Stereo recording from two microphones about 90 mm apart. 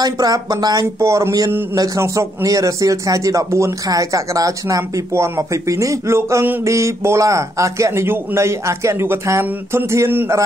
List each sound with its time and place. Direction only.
0.0 s speech: 45° right (ahead or behind)
0.9 s speech: 30° right (ahead or behind)